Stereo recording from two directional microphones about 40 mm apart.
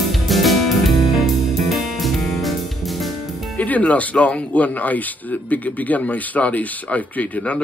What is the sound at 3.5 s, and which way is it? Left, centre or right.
Speech, left.